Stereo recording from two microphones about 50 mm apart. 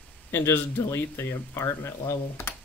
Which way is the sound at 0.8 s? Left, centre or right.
Left.